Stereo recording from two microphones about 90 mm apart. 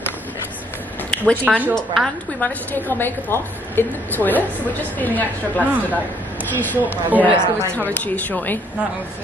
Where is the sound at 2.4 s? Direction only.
20° left (ahead or behind).